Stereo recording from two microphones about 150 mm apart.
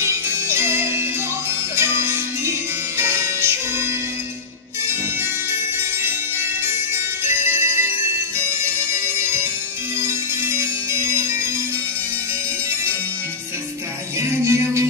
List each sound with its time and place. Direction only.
0.0 s jingle bell: 15° right (ahead or behind)
1.8 s music: 15° right (ahead or behind)
5.5 s music: 15° right (ahead or behind)
14.2 s music: 20° right (ahead or behind)